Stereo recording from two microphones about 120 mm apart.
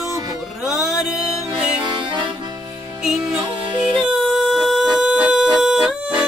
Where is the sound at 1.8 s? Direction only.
40° right (ahead or behind).